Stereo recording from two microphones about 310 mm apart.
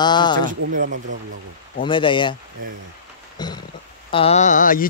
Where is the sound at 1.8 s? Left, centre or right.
Centre.